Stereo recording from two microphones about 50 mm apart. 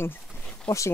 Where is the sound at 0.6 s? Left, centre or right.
Left.